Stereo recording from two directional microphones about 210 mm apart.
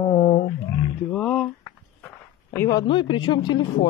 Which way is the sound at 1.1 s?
Centre (ahead or behind).